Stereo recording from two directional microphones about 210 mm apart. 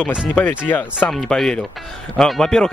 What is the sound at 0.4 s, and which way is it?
Speech, 10° left (ahead or behind).